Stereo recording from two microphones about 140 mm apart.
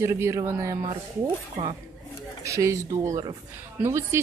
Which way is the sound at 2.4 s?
20° right (ahead or behind).